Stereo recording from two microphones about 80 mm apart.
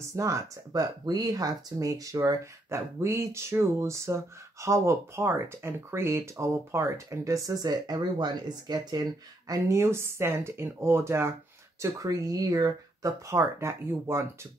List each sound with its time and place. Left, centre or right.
0.0 s speech: right
0.8 s speech: right
3.0 s speech: right
9.7 s speech: right
11.8 s speech: right